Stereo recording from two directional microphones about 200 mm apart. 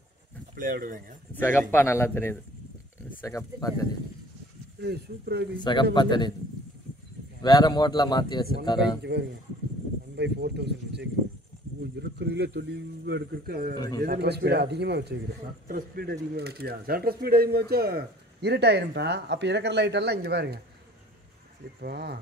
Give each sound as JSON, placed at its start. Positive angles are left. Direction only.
{"t": 0.6, "sound": "speech", "side_deg": -45}
{"t": 1.3, "sound": "a man's voice", "side_deg": 10}
{"t": 4.8, "sound": "speech", "side_deg": -55}
{"t": 5.6, "sound": "speech", "side_deg": 25}
{"t": 7.4, "sound": "speech", "side_deg": 20}
{"t": 9.0, "sound": "a man's voice", "side_deg": -60}
{"t": 13.7, "sound": "speech", "side_deg": 20}
{"t": 14.0, "sound": "a man's voice", "side_deg": -55}
{"t": 21.8, "sound": "a man's voice", "side_deg": -55}